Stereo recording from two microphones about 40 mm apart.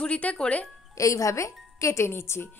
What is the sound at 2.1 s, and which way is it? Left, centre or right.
Speech, left.